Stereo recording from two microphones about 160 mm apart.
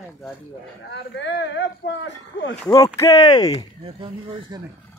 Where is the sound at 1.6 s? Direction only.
90° left.